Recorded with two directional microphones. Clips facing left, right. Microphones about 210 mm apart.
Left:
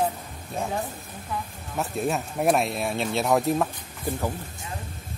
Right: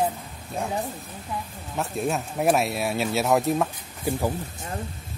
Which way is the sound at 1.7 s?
Centre (ahead or behind).